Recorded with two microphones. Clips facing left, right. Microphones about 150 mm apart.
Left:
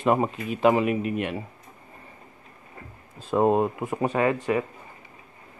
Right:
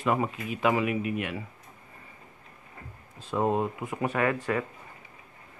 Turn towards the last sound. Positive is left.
turn(degrees=20)  # may be behind; listen again after turning